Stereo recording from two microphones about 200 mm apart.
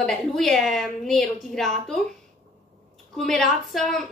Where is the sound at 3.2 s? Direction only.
Centre (ahead or behind).